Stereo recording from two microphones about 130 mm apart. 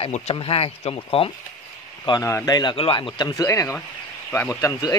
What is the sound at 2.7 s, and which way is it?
Speech, 45° left (ahead or behind).